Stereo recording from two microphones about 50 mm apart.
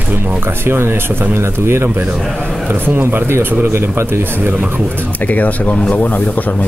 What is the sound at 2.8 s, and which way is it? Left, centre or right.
Speech, right.